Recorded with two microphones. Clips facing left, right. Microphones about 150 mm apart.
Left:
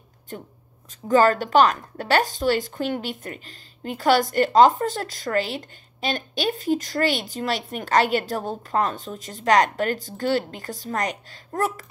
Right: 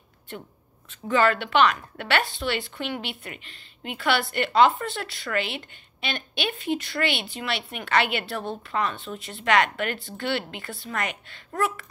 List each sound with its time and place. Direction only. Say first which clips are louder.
0.8 s speech: left 4 dB; 40° left (ahead or behind)